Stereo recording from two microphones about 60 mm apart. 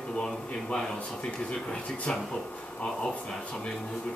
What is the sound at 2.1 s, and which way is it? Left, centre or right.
Speech, centre.